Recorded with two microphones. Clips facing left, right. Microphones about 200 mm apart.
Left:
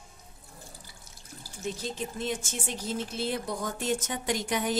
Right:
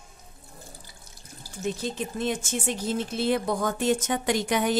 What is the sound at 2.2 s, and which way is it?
A woman's voice, 65° right (ahead or behind).